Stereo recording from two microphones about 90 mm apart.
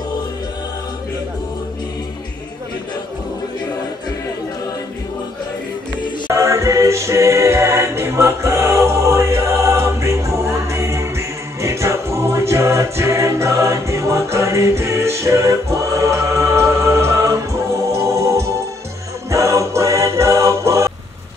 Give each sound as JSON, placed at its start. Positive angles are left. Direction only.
{"t": 6.3, "sound": "music", "side_deg": -35}